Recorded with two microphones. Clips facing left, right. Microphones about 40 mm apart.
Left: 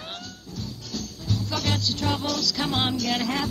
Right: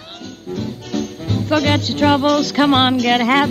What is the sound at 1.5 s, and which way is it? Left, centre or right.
Music, right.